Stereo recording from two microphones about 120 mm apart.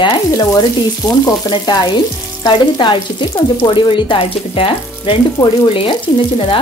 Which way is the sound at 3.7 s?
40° left (ahead or behind).